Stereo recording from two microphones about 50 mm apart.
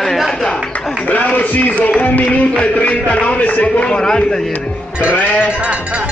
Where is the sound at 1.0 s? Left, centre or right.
Left.